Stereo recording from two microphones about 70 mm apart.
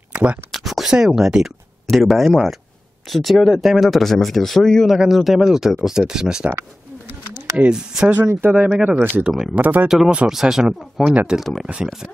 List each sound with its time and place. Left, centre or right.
0.1 s a sound: centre
0.5 s a sound: centre
0.9 s speech: centre
7.7 s speech: centre
9.3 s speech: centre
9.6 s speech: right
9.8 s speech: centre